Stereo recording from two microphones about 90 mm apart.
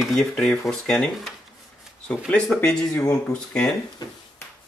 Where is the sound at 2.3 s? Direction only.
5° left (ahead or behind).